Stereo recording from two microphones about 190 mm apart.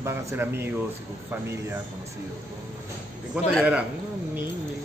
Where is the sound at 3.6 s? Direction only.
5° right (ahead or behind).